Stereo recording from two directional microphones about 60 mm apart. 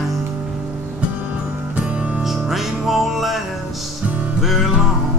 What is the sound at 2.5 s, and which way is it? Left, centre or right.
Music, centre.